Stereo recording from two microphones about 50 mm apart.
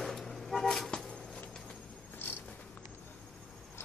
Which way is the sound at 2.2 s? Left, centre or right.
Left.